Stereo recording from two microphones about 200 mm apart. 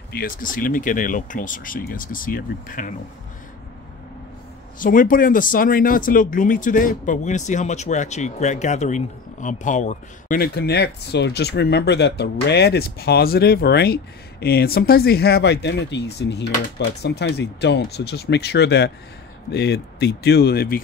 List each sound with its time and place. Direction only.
0.1 s speech: 45° left (ahead or behind)
4.7 s speech: 45° left (ahead or behind)